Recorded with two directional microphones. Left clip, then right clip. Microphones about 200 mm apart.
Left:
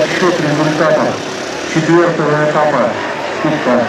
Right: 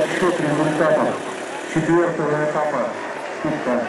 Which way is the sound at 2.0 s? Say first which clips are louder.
Left 8 dB; 25° right (ahead or behind).